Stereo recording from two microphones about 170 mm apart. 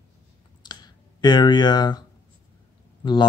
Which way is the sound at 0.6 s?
25° left (ahead or behind).